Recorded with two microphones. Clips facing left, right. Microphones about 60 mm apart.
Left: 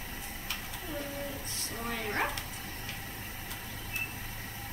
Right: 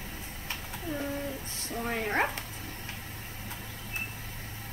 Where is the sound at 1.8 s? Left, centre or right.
Right.